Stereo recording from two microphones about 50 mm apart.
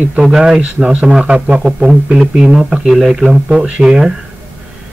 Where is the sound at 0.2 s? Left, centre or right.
Centre.